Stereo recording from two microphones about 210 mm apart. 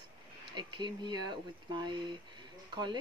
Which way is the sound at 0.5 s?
20° right (ahead or behind).